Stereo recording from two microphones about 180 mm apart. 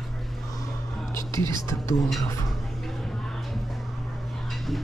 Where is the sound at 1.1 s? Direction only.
15° left (ahead or behind).